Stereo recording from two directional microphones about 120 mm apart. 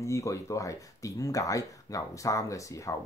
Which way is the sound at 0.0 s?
25° left (ahead or behind).